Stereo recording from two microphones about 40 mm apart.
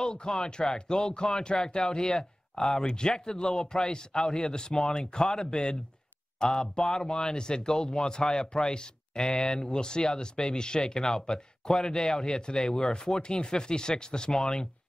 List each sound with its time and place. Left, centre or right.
0.0 s speech: centre